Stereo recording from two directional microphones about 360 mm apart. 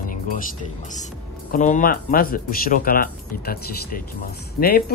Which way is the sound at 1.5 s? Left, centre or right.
Left.